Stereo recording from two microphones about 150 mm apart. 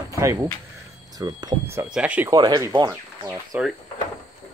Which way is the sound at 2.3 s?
30° right (ahead or behind).